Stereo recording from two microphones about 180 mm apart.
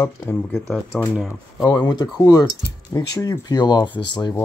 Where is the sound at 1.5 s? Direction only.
20° left (ahead or behind).